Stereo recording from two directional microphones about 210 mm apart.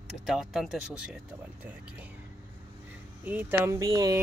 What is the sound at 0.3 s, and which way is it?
Speech, centre (ahead or behind).